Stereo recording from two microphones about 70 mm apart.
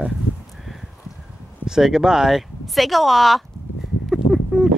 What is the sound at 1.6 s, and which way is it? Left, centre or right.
Speech, centre.